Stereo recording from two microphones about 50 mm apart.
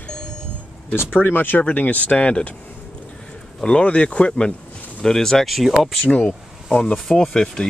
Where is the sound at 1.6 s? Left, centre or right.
Left.